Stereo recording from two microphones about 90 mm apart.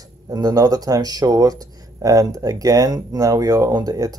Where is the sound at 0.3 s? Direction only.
45° right (ahead or behind).